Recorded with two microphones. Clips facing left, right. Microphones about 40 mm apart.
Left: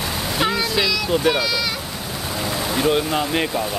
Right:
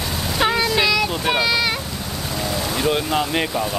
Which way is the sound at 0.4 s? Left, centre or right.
Centre.